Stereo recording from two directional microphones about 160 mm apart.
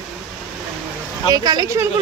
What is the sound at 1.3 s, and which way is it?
Speech, 25° right (ahead or behind).